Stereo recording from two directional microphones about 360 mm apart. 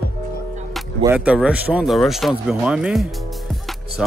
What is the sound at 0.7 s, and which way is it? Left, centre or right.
Speech, centre.